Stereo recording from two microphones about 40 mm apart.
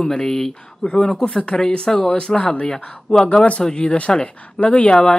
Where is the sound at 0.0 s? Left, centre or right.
Centre.